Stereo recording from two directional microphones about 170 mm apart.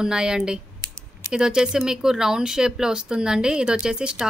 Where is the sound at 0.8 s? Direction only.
25° right (ahead or behind).